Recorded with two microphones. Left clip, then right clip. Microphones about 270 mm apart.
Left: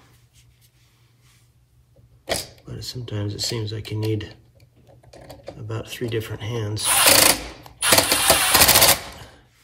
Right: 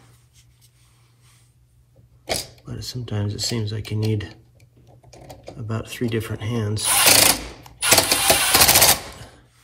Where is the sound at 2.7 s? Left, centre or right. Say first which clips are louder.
Right 1 dB; centre.